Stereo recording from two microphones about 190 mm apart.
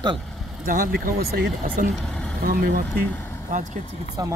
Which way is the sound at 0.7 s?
50° right (ahead or behind).